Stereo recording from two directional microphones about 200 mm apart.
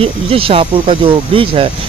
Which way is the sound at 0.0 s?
30° right (ahead or behind).